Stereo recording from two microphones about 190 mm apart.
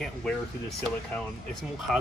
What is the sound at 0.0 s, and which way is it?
Speech, centre (ahead or behind).